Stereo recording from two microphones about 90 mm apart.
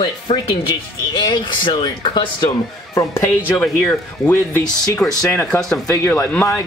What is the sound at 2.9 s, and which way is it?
Speech, 30° left (ahead or behind).